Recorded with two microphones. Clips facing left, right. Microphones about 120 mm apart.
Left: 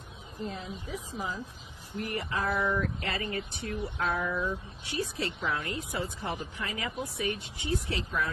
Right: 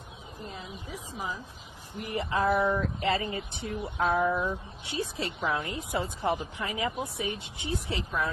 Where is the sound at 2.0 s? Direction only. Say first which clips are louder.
Right 5 dB; 25° right (ahead or behind).